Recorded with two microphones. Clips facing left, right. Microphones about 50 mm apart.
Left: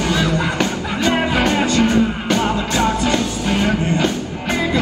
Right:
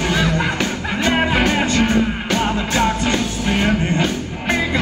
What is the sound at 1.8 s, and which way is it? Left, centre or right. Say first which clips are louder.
Music: left 2 dB; centre.